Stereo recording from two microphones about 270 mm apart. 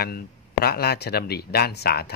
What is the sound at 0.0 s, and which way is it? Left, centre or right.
Speech, left.